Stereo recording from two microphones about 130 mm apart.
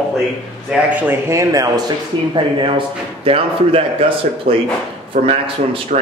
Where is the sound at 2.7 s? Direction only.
45° right (ahead or behind).